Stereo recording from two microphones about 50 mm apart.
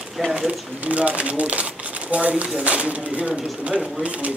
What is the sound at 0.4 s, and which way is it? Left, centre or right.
Speech, right.